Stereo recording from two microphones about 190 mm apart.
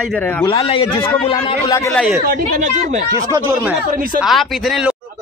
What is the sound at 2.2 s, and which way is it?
Speech, 45° right (ahead or behind).